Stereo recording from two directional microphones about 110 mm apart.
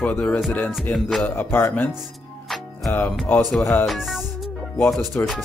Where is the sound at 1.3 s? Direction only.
25° left (ahead or behind).